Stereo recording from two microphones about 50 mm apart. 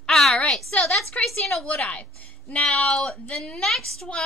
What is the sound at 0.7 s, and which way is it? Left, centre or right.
Speech, left.